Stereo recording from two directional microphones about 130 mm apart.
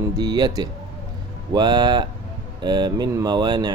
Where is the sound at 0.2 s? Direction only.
35° right (ahead or behind).